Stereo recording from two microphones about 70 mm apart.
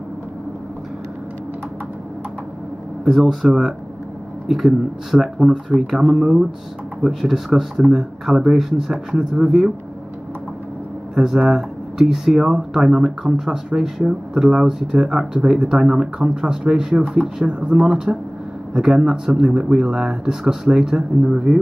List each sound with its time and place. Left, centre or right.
3.1 s speech: centre
11.1 s speech: centre